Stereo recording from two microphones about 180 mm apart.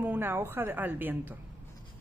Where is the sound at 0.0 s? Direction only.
10° right (ahead or behind).